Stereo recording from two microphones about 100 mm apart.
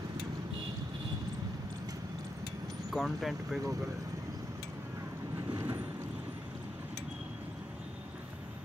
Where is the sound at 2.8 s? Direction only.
Centre (ahead or behind).